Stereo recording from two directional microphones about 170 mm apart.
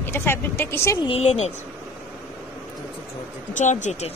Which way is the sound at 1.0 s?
40° left (ahead or behind).